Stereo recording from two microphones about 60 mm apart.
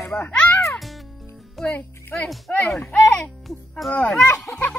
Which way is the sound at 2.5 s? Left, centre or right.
Left.